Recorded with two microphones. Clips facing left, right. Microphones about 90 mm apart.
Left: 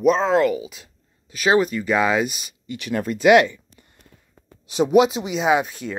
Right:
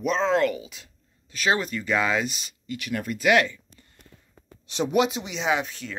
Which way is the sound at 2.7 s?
30° left (ahead or behind).